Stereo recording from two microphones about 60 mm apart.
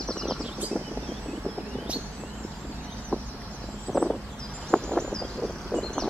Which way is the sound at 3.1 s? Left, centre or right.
Left.